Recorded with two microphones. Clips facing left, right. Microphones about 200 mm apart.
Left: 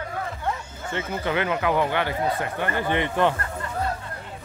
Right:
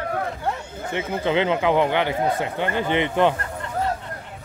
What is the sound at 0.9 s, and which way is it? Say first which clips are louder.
Speech: right 4 dB; 20° right (ahead or behind).